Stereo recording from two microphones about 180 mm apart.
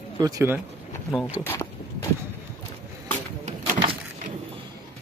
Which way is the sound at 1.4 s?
15° left (ahead or behind).